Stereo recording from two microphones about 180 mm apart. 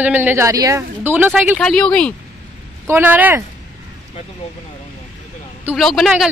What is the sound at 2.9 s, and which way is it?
Speech, 10° right (ahead or behind).